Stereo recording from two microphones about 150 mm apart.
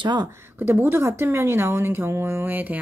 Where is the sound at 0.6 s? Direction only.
15° right (ahead or behind).